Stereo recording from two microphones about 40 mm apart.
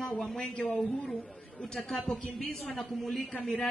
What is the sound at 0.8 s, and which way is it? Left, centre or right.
Speech, centre.